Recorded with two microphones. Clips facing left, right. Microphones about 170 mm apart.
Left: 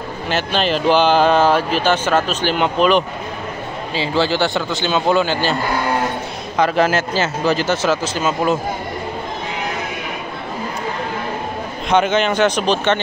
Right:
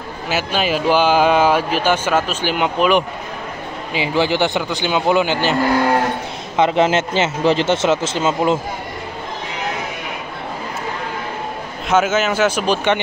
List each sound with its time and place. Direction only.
0.3 s speech: 10° right (ahead or behind); by 8.5 s 25° right (ahead or behind)
11.9 s speech: 5° right (ahead or behind)